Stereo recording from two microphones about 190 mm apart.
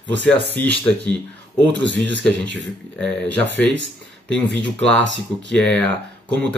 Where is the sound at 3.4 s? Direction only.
70° left (ahead or behind).